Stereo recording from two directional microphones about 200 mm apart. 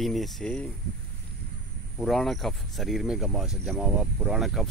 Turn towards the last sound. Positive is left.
turn(degrees=0)  # may be behind; listen again after turning